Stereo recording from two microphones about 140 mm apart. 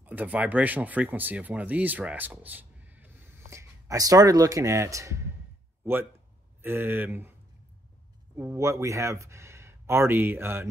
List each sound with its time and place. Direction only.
0.0 s speech: 10° right (ahead or behind)
6.6 s speech: 15° right (ahead or behind)
8.4 s speech: 20° right (ahead or behind)